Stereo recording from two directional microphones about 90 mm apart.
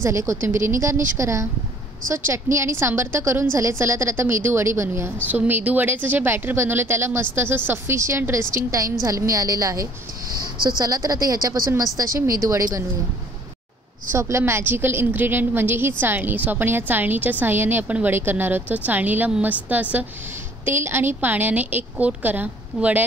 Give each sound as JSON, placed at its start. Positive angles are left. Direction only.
{"t": 0.0, "sound": "a woman's voice", "side_deg": -30}
{"t": 14.1, "sound": "a woman's voice", "side_deg": -30}